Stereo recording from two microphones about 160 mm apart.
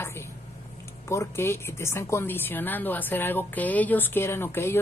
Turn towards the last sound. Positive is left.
turn(degrees=15)  # may be behind; listen again after turning